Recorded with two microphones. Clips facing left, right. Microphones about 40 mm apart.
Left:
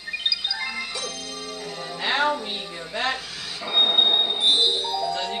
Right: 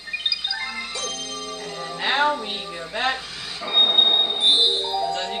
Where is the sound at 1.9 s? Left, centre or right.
Centre.